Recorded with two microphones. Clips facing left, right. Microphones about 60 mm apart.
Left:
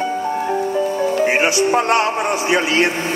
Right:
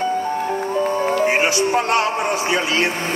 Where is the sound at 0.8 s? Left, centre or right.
Right.